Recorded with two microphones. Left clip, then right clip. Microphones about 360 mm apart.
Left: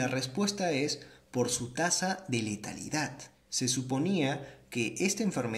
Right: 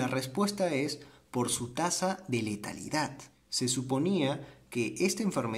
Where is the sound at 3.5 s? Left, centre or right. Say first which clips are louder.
Right 1 dB; right.